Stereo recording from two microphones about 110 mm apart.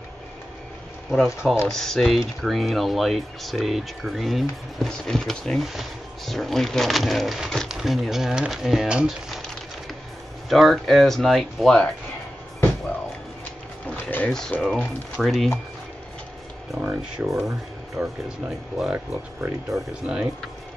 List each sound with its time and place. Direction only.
1.1 s speech: 5° right (ahead or behind)
10.5 s speech: centre (ahead or behind)
13.8 s speech: 10° left (ahead or behind)
16.8 s speech: 20° right (ahead or behind)
18.0 s speech: 10° right (ahead or behind)